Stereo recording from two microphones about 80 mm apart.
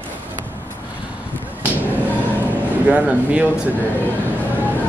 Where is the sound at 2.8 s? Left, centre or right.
Centre.